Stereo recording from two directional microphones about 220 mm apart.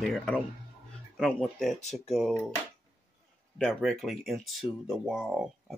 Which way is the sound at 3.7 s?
Centre (ahead or behind).